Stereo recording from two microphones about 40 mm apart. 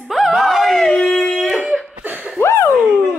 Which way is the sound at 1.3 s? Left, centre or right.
Centre.